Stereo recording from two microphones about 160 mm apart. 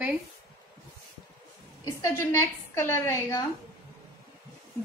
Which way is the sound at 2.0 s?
15° left (ahead or behind).